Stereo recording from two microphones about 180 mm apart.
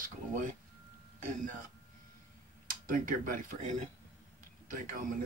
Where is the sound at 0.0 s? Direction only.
45° right (ahead or behind).